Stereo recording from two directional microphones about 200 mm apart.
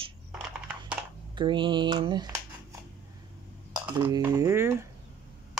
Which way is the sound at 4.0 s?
15° right (ahead or behind).